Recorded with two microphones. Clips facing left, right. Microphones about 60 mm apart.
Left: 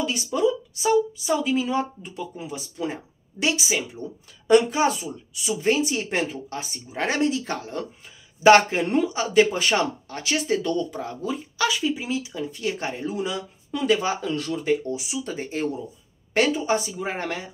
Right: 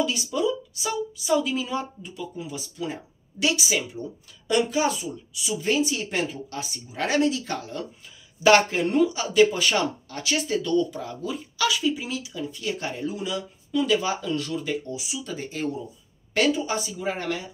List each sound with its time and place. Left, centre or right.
0.0 s a sound: left
0.8 s speech: left
4.6 s speech: left